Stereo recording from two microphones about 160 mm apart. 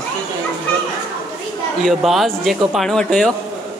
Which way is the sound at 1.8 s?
Centre (ahead or behind).